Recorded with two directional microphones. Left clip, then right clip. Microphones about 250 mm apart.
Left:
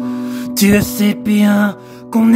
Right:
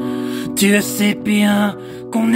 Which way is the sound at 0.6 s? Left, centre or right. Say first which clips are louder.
Left 2 dB; left.